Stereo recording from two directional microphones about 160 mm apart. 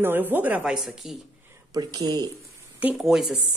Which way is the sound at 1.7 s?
25° right (ahead or behind).